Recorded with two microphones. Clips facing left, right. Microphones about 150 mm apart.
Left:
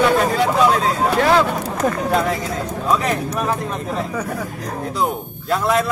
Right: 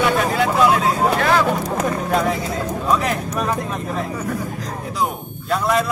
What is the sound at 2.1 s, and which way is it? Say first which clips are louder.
Music: even; centre (ahead or behind).